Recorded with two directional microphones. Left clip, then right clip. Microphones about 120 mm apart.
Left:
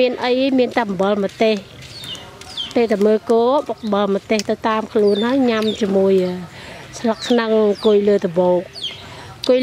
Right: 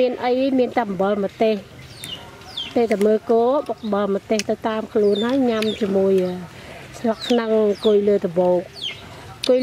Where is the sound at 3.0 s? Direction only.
15° left (ahead or behind).